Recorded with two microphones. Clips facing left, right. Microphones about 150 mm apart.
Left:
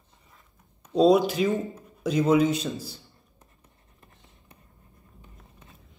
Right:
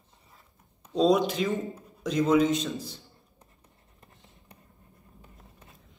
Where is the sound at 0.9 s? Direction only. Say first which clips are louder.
Left 4 dB; 5° left (ahead or behind).